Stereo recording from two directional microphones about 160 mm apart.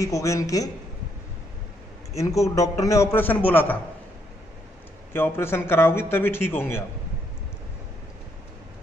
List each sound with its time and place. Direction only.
0.0 s a man's voice: 20° left (ahead or behind)
2.1 s a man's voice: 20° left (ahead or behind)
5.1 s a man's voice: 15° left (ahead or behind)